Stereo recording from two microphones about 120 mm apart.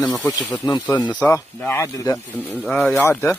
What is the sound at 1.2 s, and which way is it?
Speech, 20° left (ahead or behind).